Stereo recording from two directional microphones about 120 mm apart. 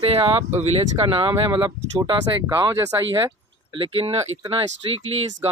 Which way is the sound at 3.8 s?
50° right (ahead or behind).